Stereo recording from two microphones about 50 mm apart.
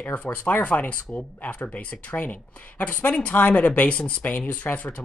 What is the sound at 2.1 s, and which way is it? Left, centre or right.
Speech, left.